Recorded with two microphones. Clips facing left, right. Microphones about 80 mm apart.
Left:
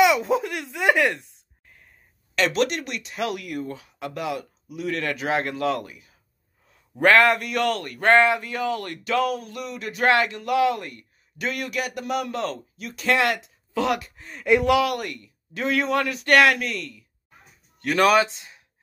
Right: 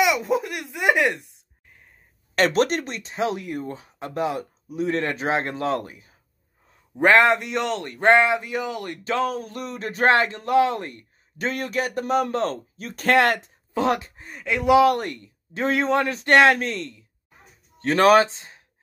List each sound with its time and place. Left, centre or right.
0.0 s baby laughter: centre
2.3 s speech: right
7.0 s speech: right
9.0 s speech: right
13.7 s speech: right